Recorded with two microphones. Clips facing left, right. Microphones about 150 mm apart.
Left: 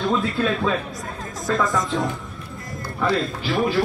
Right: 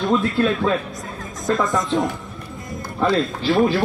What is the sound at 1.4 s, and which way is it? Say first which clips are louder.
Speech: right 2 dB; 20° right (ahead or behind).